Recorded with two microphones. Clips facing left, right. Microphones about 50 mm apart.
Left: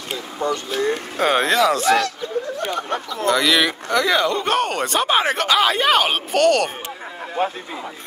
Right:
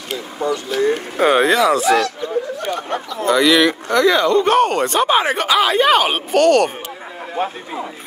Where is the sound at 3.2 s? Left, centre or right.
Centre.